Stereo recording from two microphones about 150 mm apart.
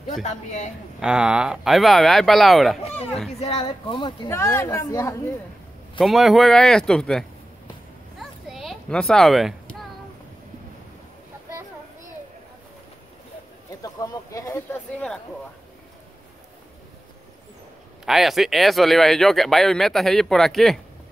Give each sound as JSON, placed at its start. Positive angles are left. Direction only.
{"t": 0.2, "sound": "a man's voice", "side_deg": 50}
{"t": 0.9, "sound": "speech", "side_deg": -5}
{"t": 3.3, "sound": "speech", "side_deg": 40}
{"t": 4.3, "sound": "a woman's voice", "side_deg": 15}
{"t": 5.9, "sound": "speech", "side_deg": 0}
{"t": 8.2, "sound": "a sound", "side_deg": 0}
{"t": 13.7, "sound": "speech", "side_deg": 25}
{"t": 18.0, "sound": "speech", "side_deg": 0}